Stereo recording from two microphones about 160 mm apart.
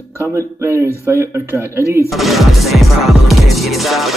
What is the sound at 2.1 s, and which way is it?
Music, centre (ahead or behind).